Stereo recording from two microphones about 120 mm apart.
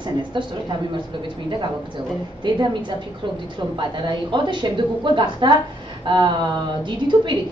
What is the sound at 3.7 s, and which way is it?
A woman's voice, 40° right (ahead or behind).